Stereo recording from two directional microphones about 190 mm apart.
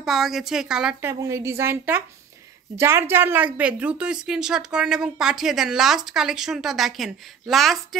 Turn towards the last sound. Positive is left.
turn(degrees=0)  # may be behind; listen again after turning